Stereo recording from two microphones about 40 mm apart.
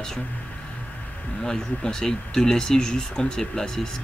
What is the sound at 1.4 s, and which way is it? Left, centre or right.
Speech, centre.